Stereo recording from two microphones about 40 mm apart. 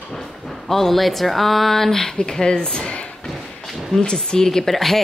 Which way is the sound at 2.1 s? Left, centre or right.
Left.